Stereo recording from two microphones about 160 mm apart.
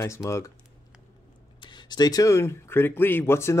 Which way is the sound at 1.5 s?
30° left (ahead or behind).